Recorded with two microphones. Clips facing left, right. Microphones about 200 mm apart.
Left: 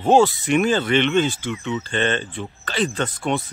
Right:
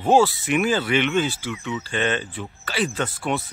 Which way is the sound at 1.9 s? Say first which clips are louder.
Even; 5° right (ahead or behind).